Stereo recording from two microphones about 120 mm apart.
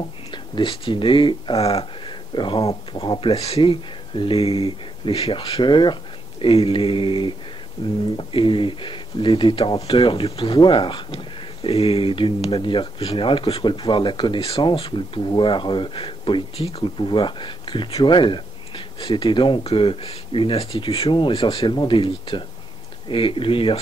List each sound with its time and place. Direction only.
0.3 s speech: 45° left (ahead or behind)